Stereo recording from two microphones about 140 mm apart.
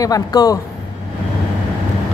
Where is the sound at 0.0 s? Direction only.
25° left (ahead or behind).